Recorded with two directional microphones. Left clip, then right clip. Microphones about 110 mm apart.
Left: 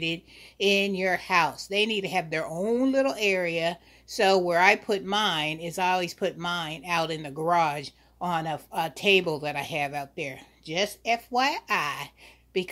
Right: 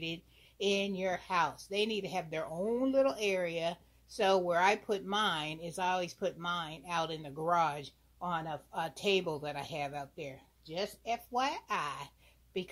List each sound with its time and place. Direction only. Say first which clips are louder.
0.0 s speech: left 10 dB; 10° left (ahead or behind)
2.2 s speech: left 8 dB; 20° left (ahead or behind)
8.7 s speech: left 10 dB; 10° left (ahead or behind)
10.7 s speech: left 10 dB; 30° left (ahead or behind)
11.3 s speech: left 7 dB; 15° left (ahead or behind)